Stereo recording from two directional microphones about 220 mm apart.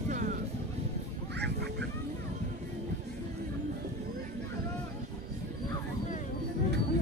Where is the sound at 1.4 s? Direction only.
50° right (ahead or behind).